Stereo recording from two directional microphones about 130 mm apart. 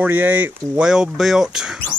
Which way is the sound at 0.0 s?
15° right (ahead or behind).